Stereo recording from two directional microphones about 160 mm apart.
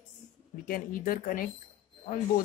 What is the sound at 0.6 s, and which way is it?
Speech, 60° left (ahead or behind).